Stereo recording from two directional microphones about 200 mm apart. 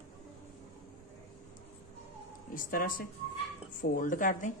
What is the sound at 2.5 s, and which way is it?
A woman's voice, 45° left (ahead or behind).